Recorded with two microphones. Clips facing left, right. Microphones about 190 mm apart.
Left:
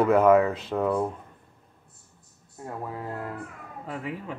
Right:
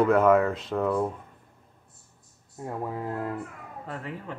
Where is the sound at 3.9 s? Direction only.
10° left (ahead or behind).